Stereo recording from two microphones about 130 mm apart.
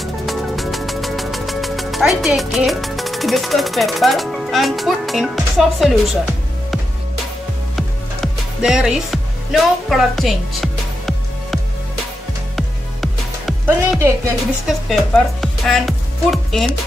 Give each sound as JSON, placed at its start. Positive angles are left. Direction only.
{"t": 0.0, "sound": "music", "side_deg": 0}
{"t": 7.7, "sound": "music", "side_deg": 0}
{"t": 13.7, "sound": "a woman's voice", "side_deg": -20}
{"t": 14.9, "sound": "speech", "side_deg": 5}